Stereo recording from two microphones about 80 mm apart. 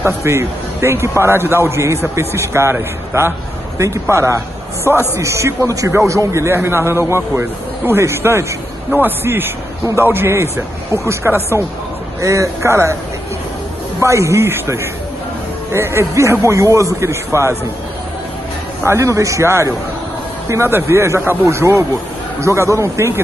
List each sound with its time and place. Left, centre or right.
0.0 s a man's voice: right
14.0 s a man's voice: right
18.9 s a man's voice: right